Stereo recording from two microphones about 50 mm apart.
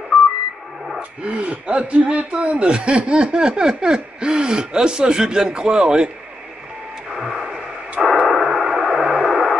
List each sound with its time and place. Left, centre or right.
1.2 s speech: right
7.1 s radio: centre
8.3 s a sound: centre